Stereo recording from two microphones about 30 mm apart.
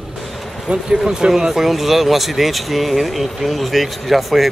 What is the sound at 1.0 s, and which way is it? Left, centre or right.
Speech, right.